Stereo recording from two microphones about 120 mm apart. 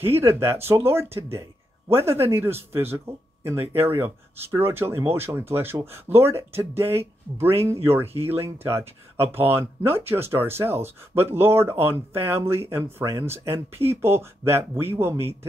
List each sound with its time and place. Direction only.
0.0 s speech: 20° right (ahead or behind)